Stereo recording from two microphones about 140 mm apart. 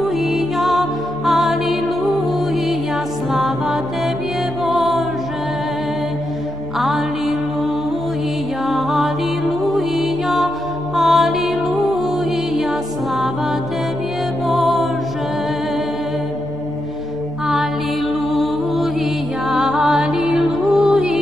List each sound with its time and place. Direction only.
0.0 s music: centre (ahead or behind)
6.8 s music: centre (ahead or behind)
8.6 s music: centre (ahead or behind)
14.5 s music: centre (ahead or behind)
18.3 s music: centre (ahead or behind)